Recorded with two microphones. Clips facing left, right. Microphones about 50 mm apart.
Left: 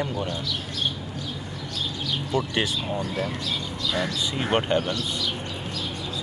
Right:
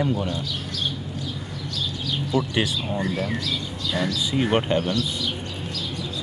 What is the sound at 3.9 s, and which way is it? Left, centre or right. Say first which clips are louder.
Speech: right 2 dB; left.